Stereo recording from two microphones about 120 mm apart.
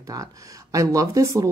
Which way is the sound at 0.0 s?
30° right (ahead or behind).